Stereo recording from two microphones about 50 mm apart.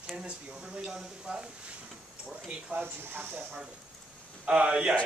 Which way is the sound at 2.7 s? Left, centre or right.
Right.